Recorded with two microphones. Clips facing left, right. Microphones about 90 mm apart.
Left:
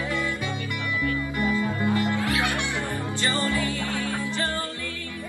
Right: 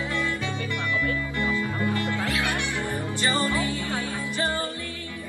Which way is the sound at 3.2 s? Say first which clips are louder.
Right 1 dB; 20° right (ahead or behind).